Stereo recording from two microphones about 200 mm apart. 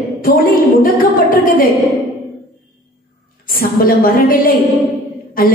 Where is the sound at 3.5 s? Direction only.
45° left (ahead or behind).